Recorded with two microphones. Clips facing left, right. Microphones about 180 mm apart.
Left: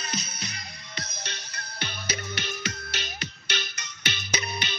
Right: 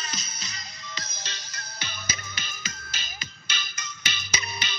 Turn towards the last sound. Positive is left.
turn(degrees=65)  # may be behind; listen again after turning